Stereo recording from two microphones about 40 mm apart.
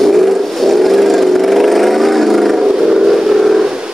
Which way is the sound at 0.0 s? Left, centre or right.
Centre.